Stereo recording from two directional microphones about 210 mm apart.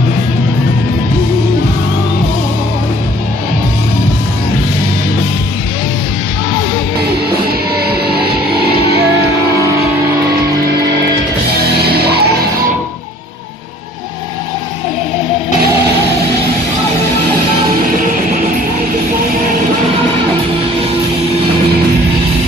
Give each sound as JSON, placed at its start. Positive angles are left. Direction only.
{"t": 11.7, "sound": "music", "side_deg": -50}